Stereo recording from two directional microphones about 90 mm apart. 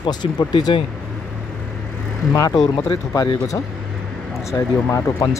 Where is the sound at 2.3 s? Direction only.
40° left (ahead or behind).